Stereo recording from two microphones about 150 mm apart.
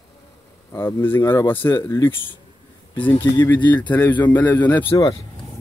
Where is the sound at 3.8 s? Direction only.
10° left (ahead or behind).